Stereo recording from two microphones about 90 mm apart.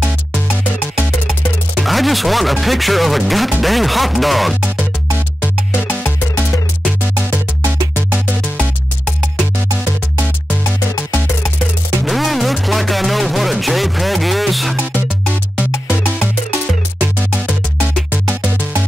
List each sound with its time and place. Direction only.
1.8 s speech: centre (ahead or behind)
5.4 s music: 20° left (ahead or behind)
12.0 s music: centre (ahead or behind)